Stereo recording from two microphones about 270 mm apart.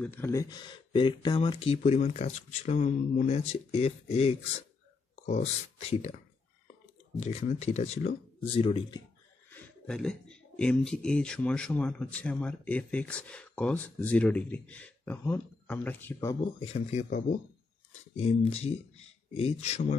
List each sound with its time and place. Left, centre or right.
0.0 s speech: centre; by 6.1 s left
7.2 s speech: left
9.5 s speech: centre
16.3 s speech: left